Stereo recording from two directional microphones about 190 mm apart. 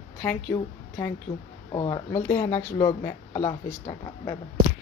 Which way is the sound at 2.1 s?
10° left (ahead or behind).